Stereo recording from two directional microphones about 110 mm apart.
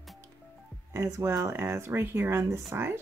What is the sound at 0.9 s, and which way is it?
Speech, 25° right (ahead or behind).